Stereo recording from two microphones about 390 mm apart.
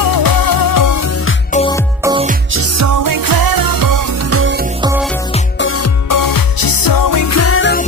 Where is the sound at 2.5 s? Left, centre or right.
Right.